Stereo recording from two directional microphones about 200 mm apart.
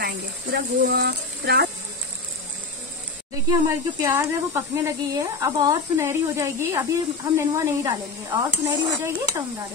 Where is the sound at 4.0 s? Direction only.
15° right (ahead or behind).